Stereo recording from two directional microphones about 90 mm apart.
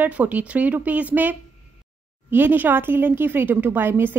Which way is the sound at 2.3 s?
20° right (ahead or behind).